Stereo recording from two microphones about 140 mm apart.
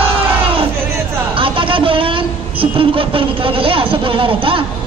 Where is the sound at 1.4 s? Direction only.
40° right (ahead or behind).